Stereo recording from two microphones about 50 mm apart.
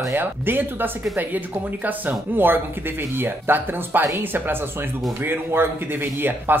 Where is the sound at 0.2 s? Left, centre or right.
Right.